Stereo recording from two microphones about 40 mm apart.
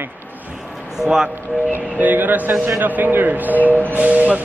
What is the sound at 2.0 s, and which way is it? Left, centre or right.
Speech, right.